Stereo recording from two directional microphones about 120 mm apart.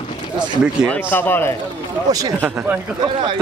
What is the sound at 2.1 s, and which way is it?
Speech, 30° right (ahead or behind).